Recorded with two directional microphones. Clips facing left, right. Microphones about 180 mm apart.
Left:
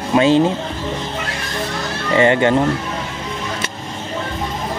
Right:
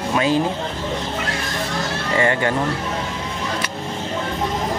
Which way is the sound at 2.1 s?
20° left (ahead or behind).